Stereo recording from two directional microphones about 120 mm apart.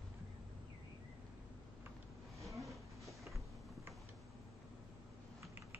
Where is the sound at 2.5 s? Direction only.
Centre (ahead or behind).